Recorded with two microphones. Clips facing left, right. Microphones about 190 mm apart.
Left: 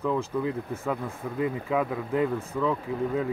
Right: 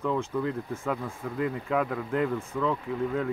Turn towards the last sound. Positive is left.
turn(degrees=5)  # may be behind; listen again after turning